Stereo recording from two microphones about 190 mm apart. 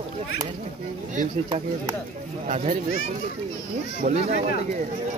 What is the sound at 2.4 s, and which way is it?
Speech, 35° right (ahead or behind).